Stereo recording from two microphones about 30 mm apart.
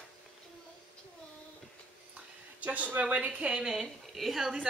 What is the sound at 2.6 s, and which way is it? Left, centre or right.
Speech, right.